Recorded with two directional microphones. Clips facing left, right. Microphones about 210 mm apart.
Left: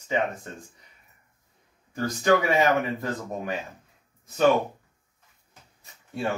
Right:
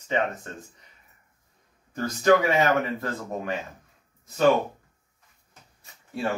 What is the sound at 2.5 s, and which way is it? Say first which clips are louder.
Speech: even; 15° left (ahead or behind).